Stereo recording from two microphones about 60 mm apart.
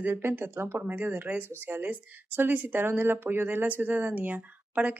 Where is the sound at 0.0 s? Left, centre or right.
Right.